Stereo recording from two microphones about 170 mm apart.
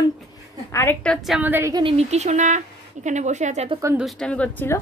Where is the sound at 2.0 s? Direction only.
40° right (ahead or behind).